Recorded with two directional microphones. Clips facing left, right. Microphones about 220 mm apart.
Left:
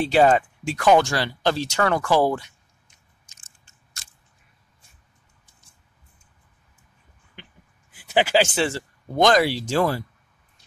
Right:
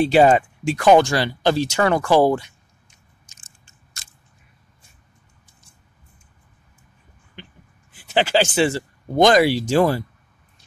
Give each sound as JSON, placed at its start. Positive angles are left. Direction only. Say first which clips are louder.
{"t": 0.0, "sound": "speech", "louder": "right 3 dB", "side_deg": -10}
{"t": 2.0, "sound": "speech", "louder": "right 5 dB", "side_deg": -25}
{"t": 8.1, "sound": "speech", "louder": "right 1 dB", "side_deg": 10}
{"t": 8.5, "sound": "speech", "louder": "right 5 dB", "side_deg": -10}